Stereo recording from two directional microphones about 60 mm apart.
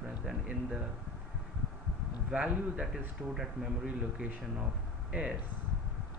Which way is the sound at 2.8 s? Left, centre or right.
Centre.